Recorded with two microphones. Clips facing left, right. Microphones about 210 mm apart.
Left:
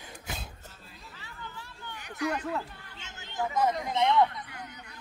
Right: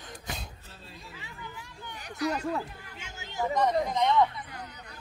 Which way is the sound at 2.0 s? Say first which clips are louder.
Right 1 dB; 35° right (ahead or behind).